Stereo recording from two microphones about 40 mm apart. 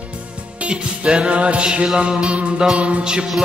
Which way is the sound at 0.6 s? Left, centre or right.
Right.